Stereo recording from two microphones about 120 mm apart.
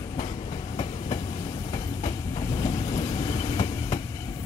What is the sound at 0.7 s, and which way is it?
Train, 40° left (ahead or behind).